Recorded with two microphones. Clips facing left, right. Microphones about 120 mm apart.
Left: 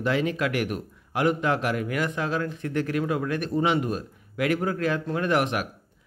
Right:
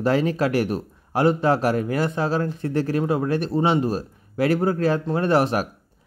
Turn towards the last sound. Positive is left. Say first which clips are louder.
# right 5 dB
turn(degrees=-35)  # may be behind; listen again after turning